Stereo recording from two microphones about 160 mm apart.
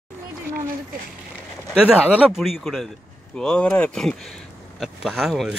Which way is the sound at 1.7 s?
5° right (ahead or behind).